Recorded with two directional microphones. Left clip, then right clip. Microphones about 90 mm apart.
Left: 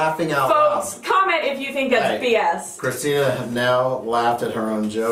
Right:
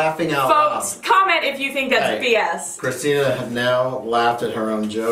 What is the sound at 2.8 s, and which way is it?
Speech, 15° left (ahead or behind).